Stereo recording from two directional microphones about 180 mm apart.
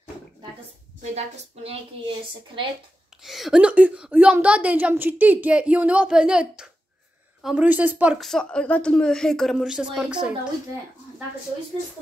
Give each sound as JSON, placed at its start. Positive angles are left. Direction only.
{"t": 1.1, "sound": "a woman's voice", "side_deg": -35}
{"t": 3.2, "sound": "a woman's voice", "side_deg": 0}